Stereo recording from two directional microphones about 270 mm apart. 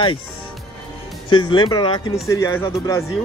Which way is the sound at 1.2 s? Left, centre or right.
Centre.